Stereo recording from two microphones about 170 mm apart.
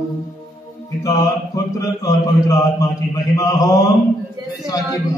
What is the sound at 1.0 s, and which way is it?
A capella, 20° left (ahead or behind).